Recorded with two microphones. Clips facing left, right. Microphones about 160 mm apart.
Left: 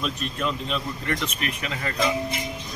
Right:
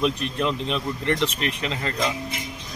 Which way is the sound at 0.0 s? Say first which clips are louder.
Right 4 dB; 20° right (ahead or behind).